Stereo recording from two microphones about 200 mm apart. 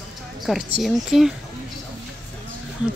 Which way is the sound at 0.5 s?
5° right (ahead or behind).